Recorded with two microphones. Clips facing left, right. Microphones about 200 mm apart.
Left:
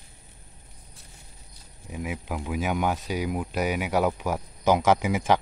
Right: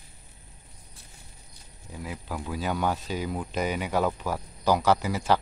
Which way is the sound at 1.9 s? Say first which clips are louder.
Left 4 dB; 10° left (ahead or behind).